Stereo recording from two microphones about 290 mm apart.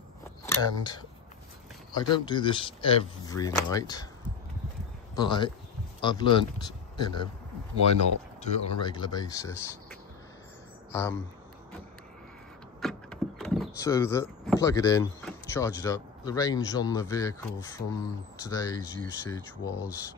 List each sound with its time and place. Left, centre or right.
0.5 s speech: centre
5.1 s speech: centre
8.4 s speech: centre
12.8 s vehicle: centre
14.6 s speech: centre